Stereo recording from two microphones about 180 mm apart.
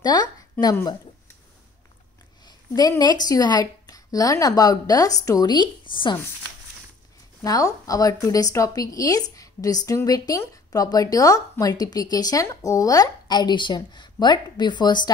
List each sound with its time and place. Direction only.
0.0 s speech: 20° left (ahead or behind)
2.4 s speech: 20° left (ahead or behind)
7.4 s a woman's voice: 20° left (ahead or behind)